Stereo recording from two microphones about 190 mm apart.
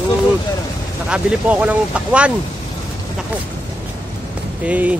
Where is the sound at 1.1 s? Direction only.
5° right (ahead or behind).